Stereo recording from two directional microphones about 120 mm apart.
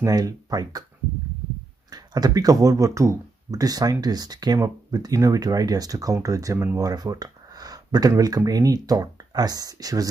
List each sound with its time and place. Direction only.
0.0 s speech: 30° right (ahead or behind)
1.9 s speech: 35° right (ahead or behind)